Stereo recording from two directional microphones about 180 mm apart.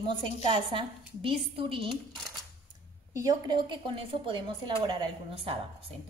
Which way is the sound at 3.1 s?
20° right (ahead or behind).